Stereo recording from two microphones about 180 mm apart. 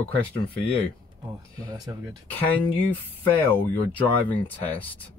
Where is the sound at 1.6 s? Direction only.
20° right (ahead or behind).